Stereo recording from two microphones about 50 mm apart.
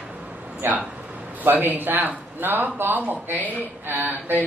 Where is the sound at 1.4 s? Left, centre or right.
Right.